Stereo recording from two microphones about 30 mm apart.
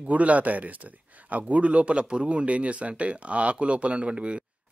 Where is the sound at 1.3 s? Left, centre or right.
Right.